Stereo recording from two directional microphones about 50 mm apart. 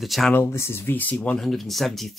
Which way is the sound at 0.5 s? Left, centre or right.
Left.